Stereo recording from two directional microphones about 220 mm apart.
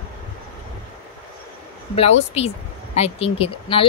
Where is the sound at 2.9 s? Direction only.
25° left (ahead or behind).